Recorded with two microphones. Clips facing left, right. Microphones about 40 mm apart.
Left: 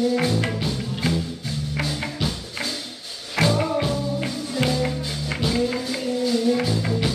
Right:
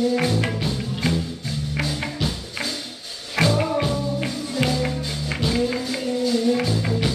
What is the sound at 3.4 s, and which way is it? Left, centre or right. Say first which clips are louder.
Music: right 1 dB; centre.